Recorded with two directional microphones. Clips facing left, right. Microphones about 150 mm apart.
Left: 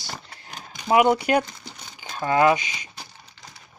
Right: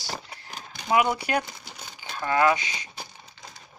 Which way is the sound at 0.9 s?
25° left (ahead or behind).